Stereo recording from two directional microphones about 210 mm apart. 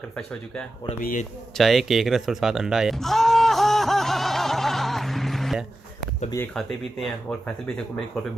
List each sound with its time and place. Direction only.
0.8 s speech: 35° left (ahead or behind)
1.6 s a sound: centre (ahead or behind)
6.3 s speech: 5° left (ahead or behind)